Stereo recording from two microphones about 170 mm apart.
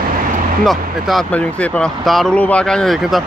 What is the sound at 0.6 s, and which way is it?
Speech, centre (ahead or behind).